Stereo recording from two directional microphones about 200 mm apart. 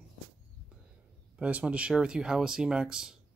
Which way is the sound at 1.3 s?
5° right (ahead or behind).